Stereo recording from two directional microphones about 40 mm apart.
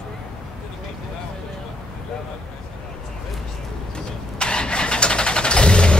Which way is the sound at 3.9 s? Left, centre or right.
Left.